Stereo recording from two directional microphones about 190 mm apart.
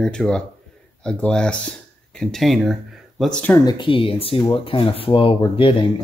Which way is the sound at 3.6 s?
25° left (ahead or behind).